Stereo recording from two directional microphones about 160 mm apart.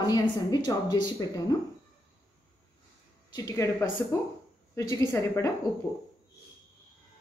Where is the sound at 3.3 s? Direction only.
20° left (ahead or behind).